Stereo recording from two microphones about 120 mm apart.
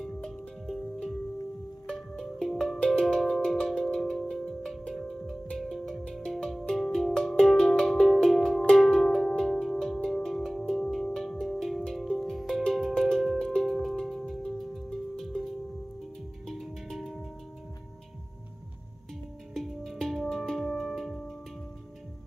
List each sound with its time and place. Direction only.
0.0 s music: 5° left (ahead or behind)
19.5 s music: centre (ahead or behind)